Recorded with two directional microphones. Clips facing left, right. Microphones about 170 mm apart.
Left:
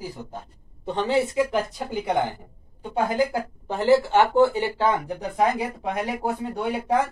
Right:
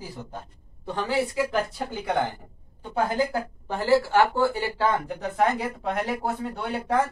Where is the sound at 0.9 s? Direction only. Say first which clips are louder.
Left 3 dB; 20° left (ahead or behind).